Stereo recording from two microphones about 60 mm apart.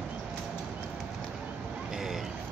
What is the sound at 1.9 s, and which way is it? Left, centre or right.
Vehicle, centre.